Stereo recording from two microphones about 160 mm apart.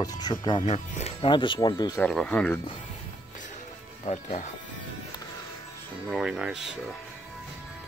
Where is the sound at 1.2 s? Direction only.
30° left (ahead or behind).